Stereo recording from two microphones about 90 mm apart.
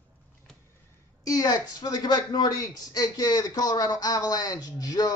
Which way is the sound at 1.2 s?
45° left (ahead or behind).